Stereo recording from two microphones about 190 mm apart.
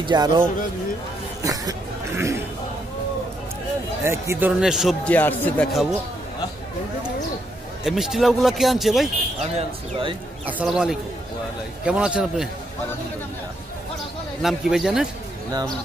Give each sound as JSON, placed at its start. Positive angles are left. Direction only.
{"t": 0.0, "sound": "speech", "side_deg": -20}
{"t": 4.0, "sound": "a man's voice", "side_deg": -15}
{"t": 5.7, "sound": "a man's voice", "side_deg": 0}
{"t": 7.8, "sound": "a man's voice", "side_deg": 0}
{"t": 9.6, "sound": "speech", "side_deg": -30}
{"t": 10.4, "sound": "a man's voice", "side_deg": -5}
{"t": 14.4, "sound": "a man's voice", "side_deg": 0}